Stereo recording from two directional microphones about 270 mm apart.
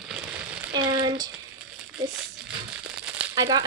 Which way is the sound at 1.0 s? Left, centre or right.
Centre.